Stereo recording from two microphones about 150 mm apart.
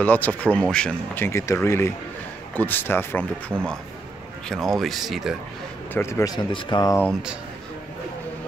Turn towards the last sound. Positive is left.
turn(degrees=30)  # may be behind; listen again after turning